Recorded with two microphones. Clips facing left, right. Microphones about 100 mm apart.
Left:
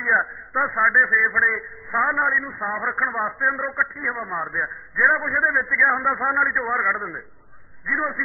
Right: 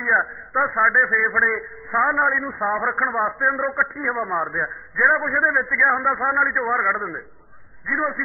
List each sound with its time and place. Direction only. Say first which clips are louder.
0.0 s a man's voice: right 1 dB; 5° right (ahead or behind)
2.3 s a man's voice: right 3 dB; 25° right (ahead or behind)
4.9 s a man's voice: right 1 dB; 5° right (ahead or behind)